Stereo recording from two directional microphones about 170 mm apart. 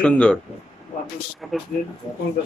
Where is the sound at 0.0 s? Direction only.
5° left (ahead or behind).